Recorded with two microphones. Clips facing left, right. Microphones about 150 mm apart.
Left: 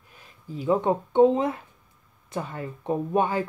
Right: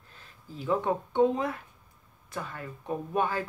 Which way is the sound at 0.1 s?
15° left (ahead or behind).